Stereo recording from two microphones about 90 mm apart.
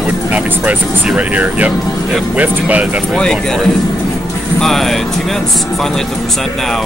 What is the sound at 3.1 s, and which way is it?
Speech, 5° left (ahead or behind).